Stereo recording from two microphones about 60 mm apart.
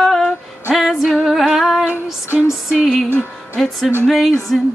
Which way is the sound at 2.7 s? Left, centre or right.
Centre.